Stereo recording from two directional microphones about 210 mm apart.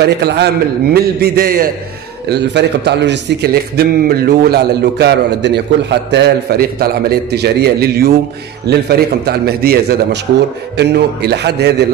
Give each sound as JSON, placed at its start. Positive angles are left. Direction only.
{"t": 0.0, "sound": "a man's voice", "side_deg": -50}